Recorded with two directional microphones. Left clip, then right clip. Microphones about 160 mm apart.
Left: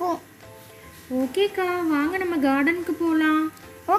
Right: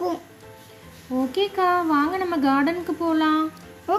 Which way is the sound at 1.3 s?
10° right (ahead or behind).